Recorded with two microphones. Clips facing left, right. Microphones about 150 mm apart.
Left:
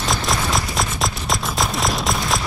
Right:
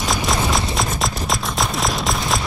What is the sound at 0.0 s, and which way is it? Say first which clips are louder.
Clip-clop: right 1 dB; centre (ahead or behind).